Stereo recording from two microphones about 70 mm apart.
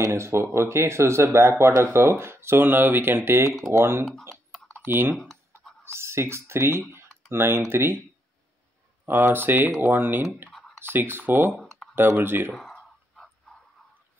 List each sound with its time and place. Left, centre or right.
0.0 s speech: right
5.1 s speech: centre
5.9 s speech: right
6.9 s typing: right
7.7 s speech: right
9.0 s speech: right
11.5 s typing: centre
12.2 s speech: right
12.7 s whispering: centre